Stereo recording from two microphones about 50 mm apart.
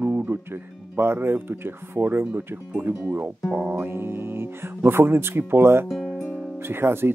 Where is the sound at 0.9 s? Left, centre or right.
Right.